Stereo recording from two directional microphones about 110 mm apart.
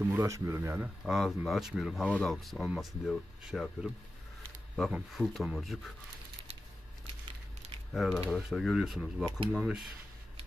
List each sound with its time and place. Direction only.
0.0 s speech: 25° right (ahead or behind)
1.0 s speech: centre (ahead or behind)
2.0 s speech: 10° left (ahead or behind)
2.3 s speech: centre (ahead or behind)
4.9 s speech: centre (ahead or behind)
7.9 s speech: centre (ahead or behind)